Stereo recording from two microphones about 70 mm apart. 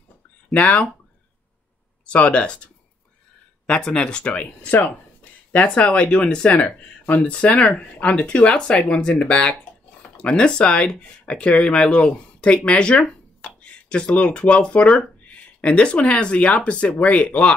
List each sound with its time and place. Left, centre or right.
0.5 s speech: left
2.0 s speech: centre